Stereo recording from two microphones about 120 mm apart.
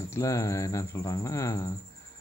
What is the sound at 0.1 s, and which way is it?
Speech, 25° left (ahead or behind).